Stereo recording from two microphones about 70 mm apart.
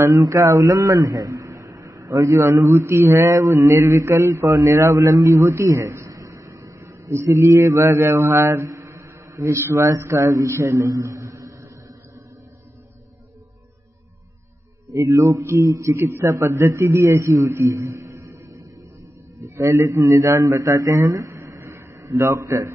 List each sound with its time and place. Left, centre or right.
0.3 s a man's voice: right
2.3 s mantra: right
8.6 s a sound: right
9.7 s mantra: right
15.0 s mantra: right
17.5 s a man's voice: right
19.4 s a man's voice: right
20.0 s mantra: right
21.1 s a sound: right
21.7 s a sound: right